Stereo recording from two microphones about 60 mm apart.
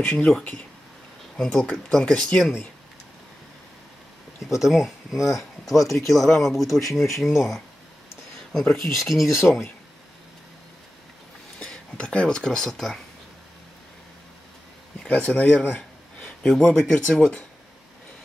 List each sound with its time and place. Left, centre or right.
0.0 s speech: centre
1.3 s speech: centre
4.4 s speech: centre
8.7 s speech: centre
11.6 s speech: centre
15.0 s speech: left
16.2 s a sound: centre
16.8 s speech: centre